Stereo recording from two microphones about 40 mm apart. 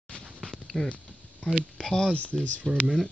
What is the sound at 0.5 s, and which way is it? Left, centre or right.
Clip-clop, centre.